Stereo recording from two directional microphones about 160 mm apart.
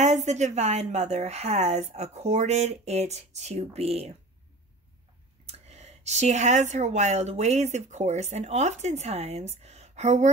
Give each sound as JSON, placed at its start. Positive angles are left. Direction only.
{"t": 0.0, "sound": "a woman's voice", "side_deg": -45}
{"t": 5.5, "sound": "a woman's voice", "side_deg": -40}